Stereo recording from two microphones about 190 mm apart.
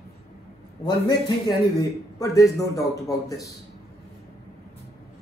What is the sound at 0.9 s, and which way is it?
A man's voice, 20° left (ahead or behind).